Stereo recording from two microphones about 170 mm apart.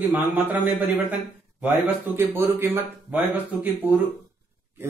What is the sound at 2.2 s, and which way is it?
Speech, 15° right (ahead or behind).